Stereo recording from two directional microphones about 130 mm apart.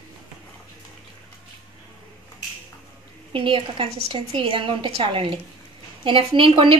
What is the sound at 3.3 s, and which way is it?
A woman's voice, 45° right (ahead or behind).